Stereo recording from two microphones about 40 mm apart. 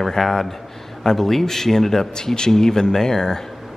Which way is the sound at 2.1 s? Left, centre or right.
Centre.